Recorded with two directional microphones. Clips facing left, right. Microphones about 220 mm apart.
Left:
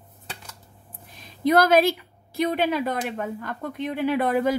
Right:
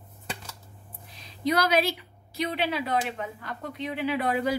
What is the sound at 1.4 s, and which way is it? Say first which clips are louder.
Speech: left 6 dB; 50° left (ahead or behind).